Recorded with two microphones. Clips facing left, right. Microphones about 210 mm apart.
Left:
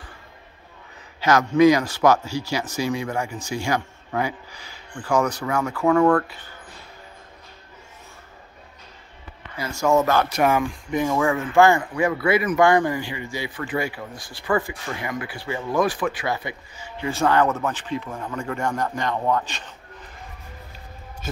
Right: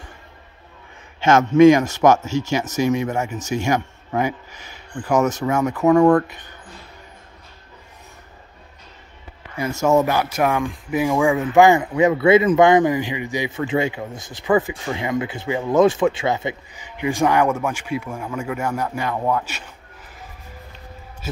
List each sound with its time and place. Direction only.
1.2 s speech: 25° right (ahead or behind)
9.7 s speech: 20° right (ahead or behind)
10.3 s speech: centre (ahead or behind)